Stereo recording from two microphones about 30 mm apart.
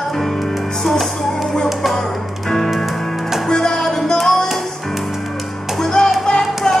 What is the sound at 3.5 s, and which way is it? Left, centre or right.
Music, centre.